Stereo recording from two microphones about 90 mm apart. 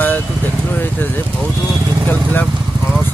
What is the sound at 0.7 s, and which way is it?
Vehicle, 20° left (ahead or behind).